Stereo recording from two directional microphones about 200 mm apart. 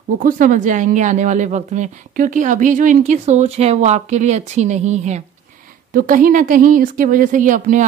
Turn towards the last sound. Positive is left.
turn(degrees=-40)  # may be behind; listen again after turning